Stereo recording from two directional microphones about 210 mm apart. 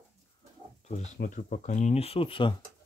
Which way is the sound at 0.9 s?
35° left (ahead or behind).